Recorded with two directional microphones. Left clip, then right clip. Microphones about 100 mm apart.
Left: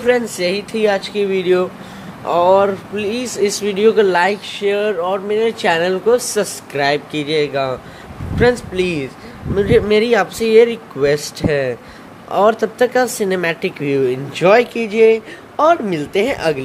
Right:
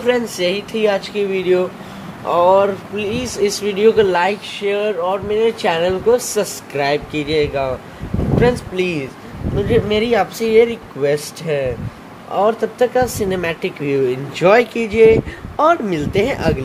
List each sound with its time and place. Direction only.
0.0 s speech: 30° left (ahead or behind)
9.6 s speech: 40° left (ahead or behind); by 16.6 s 20° left (ahead or behind)